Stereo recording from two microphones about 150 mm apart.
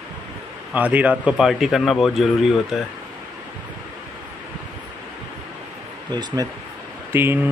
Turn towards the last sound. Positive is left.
turn(degrees=-15)  # may be behind; listen again after turning